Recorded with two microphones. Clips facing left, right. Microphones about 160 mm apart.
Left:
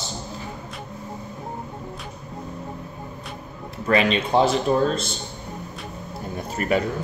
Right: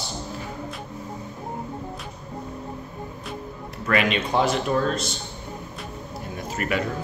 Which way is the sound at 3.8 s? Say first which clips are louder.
Left 3 dB; 30° left (ahead or behind).